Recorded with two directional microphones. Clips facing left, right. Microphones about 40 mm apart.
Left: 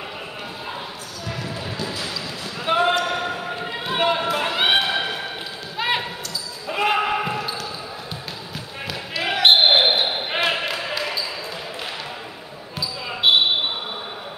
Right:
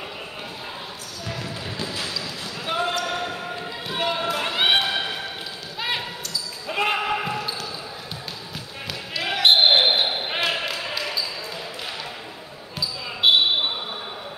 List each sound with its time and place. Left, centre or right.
2.6 s basketball bounce: left
6.7 s basketball bounce: centre
7.0 s basketball bounce: centre
9.2 s basketball bounce: centre
13.2 s basketball bounce: centre